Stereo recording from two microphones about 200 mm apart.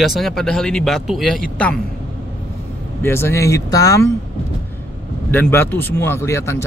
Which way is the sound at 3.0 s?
10° left (ahead or behind).